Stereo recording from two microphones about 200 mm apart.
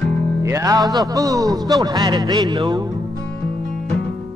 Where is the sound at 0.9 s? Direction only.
15° right (ahead or behind).